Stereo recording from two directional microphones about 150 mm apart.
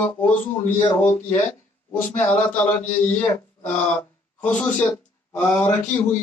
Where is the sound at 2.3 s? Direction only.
55° left (ahead or behind).